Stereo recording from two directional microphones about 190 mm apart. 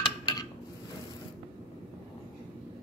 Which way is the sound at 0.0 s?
20° left (ahead or behind).